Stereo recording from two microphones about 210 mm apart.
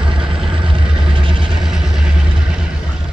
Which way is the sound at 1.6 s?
5° right (ahead or behind).